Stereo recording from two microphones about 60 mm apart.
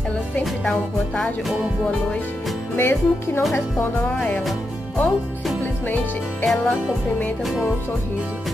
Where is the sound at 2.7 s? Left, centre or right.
Left.